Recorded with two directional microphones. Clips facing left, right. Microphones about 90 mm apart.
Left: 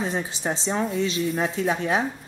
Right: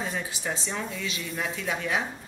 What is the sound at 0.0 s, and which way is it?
Speech, 30° left (ahead or behind).